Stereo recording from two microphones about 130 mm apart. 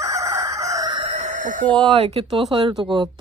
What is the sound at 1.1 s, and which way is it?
Chicken, 65° right (ahead or behind).